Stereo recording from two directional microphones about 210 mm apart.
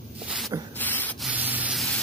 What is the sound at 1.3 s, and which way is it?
Rub, 5° right (ahead or behind).